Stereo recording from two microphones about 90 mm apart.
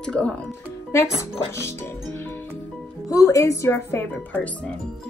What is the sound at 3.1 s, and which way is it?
Speech, 35° left (ahead or behind).